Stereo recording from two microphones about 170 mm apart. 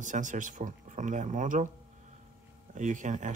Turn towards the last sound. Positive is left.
turn(degrees=-45)  # may be behind; listen again after turning